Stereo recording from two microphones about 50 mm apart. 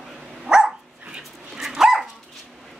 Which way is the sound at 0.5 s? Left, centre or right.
Centre.